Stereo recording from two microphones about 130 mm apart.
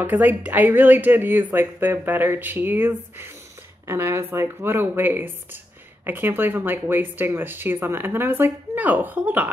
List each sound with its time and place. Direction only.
0.0 s speech: 15° right (ahead or behind)